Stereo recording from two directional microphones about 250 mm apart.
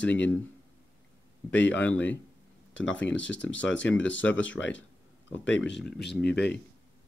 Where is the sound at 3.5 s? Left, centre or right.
Left.